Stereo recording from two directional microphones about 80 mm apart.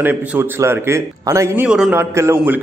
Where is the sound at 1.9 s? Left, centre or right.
Right.